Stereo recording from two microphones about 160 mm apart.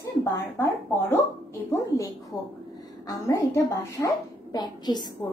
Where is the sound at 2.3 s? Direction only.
Centre (ahead or behind).